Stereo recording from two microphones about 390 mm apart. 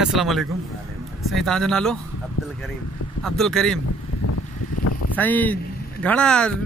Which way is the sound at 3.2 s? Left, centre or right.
Centre.